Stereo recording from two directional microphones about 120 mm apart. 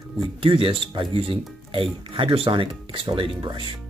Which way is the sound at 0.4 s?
45° right (ahead or behind).